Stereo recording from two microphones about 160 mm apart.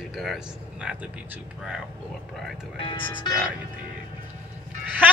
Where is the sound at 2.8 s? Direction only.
30° left (ahead or behind).